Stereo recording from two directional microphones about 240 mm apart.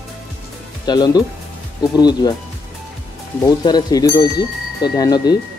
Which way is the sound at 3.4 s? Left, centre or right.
Centre.